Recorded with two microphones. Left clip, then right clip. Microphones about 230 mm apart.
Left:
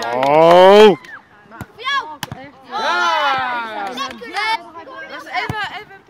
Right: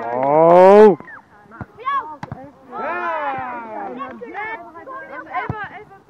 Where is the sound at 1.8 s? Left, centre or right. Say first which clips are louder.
Left 2 dB; left.